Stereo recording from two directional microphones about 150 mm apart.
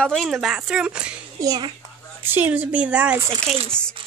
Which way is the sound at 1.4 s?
25° right (ahead or behind).